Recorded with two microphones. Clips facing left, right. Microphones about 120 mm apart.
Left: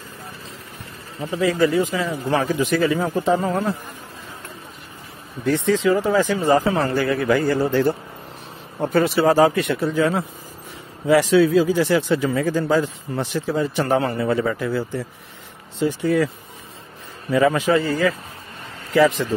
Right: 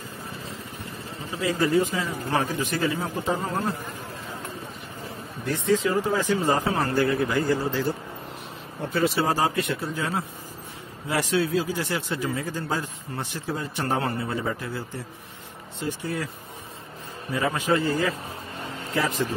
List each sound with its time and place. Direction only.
1.6 s speech: 90° left
5.4 s speech: 90° left; by 7.9 s 65° left (ahead or behind)
8.8 s speech: 50° left (ahead or behind)
9.1 s speech: 85° left
17.3 s speech: 90° left